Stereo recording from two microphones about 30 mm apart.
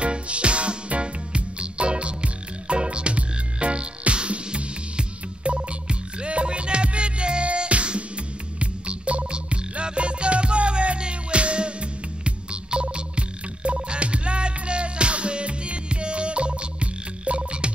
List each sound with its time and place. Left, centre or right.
0.0 s music: right